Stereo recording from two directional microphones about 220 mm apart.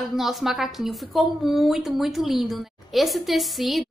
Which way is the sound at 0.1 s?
Centre (ahead or behind).